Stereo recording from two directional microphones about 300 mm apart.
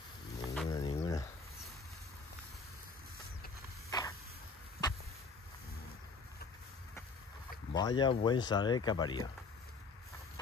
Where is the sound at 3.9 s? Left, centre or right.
Centre.